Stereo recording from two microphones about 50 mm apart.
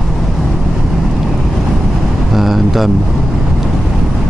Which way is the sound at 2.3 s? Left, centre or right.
Centre.